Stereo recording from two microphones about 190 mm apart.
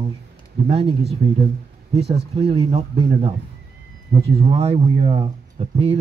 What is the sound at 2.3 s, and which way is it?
Speech, 30° right (ahead or behind).